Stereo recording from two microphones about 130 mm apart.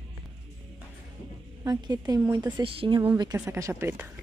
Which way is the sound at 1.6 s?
30° right (ahead or behind).